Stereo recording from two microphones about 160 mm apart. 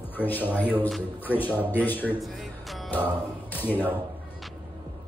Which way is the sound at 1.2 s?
10° left (ahead or behind).